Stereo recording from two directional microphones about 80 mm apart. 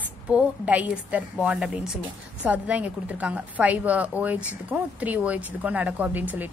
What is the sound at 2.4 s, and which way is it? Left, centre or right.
Speech, centre.